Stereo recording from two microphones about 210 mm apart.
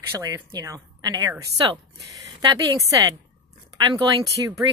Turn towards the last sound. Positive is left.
turn(degrees=-20)  # may be behind; listen again after turning